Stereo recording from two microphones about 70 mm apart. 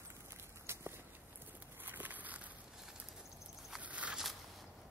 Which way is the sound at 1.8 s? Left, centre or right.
Right.